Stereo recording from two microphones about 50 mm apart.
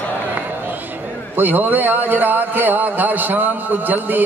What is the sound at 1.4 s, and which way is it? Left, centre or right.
A man's voice, right.